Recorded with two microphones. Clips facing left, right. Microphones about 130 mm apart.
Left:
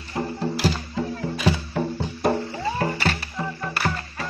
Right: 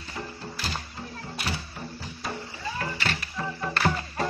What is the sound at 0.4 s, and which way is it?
Music, 90° left.